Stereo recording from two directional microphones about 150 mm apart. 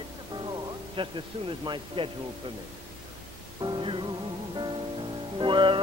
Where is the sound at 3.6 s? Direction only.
35° right (ahead or behind).